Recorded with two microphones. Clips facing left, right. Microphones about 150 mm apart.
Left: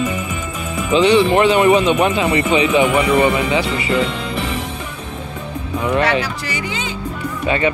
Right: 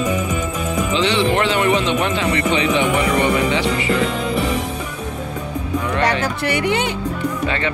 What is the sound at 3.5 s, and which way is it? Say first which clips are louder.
Speech: even; 10° left (ahead or behind).